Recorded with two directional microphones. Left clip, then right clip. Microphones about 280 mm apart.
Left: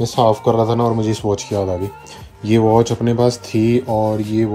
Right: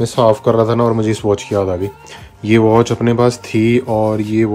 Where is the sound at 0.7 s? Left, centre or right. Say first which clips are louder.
Right 3 dB; centre.